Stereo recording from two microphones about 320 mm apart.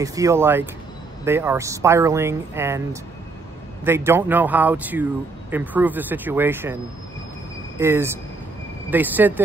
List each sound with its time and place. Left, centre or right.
0.0 s speech: centre
7.8 s speech: centre